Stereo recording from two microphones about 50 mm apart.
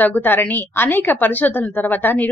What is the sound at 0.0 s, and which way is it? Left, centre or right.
A woman's voice, left.